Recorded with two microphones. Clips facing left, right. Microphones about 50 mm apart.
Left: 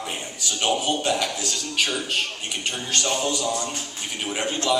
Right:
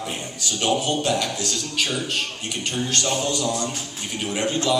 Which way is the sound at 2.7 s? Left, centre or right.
Centre.